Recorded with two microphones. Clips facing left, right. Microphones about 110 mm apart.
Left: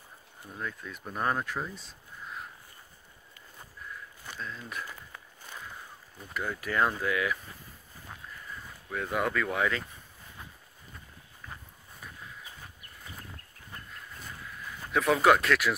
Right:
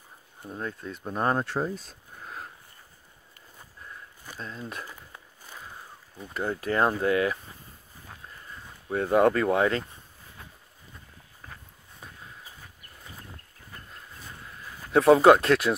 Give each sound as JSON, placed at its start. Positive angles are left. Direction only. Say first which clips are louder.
{"t": 0.5, "sound": "speech", "louder": "right 4 dB", "side_deg": -35}
{"t": 1.8, "sound": "a sound", "louder": "right 1 dB", "side_deg": -40}
{"t": 4.4, "sound": "speech", "louder": "right 2 dB", "side_deg": -30}
{"t": 6.3, "sound": "speech", "louder": "right 4 dB", "side_deg": -30}
{"t": 8.8, "sound": "speech", "louder": "right 10 dB", "side_deg": -35}
{"t": 14.9, "sound": "speech", "louder": "right 7 dB", "side_deg": -30}